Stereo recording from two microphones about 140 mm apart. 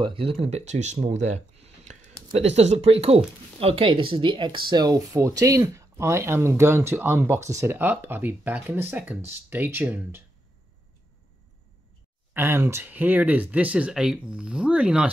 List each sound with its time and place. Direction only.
0.0 s speech: 40° right (ahead or behind); by 10.2 s 10° right (ahead or behind)
12.4 s speech: 20° right (ahead or behind)